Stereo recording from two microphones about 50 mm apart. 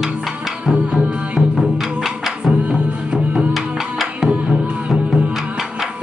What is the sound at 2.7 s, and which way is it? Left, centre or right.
Music, centre.